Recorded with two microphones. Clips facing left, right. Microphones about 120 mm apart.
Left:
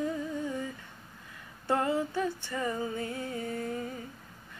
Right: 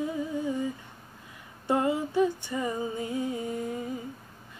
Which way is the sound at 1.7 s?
15° right (ahead or behind).